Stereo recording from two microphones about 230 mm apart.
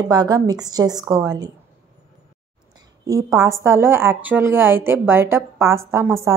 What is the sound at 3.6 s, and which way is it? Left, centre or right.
Speech, centre.